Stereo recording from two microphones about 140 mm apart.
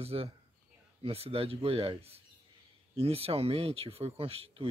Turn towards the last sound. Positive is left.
turn(degrees=-45)  # may be behind; listen again after turning